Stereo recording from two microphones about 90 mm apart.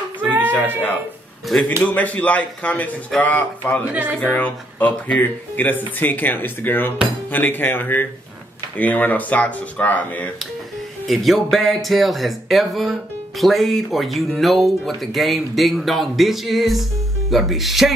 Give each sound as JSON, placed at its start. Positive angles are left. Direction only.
{"t": 0.4, "sound": "a sound", "side_deg": 15}
{"t": 1.8, "sound": "speech", "side_deg": 15}
{"t": 3.9, "sound": "speech", "side_deg": -20}
{"t": 4.2, "sound": "speech", "side_deg": 20}
{"t": 11.1, "sound": "speech", "side_deg": 0}